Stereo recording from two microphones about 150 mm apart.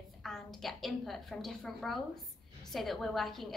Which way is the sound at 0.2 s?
Centre (ahead or behind).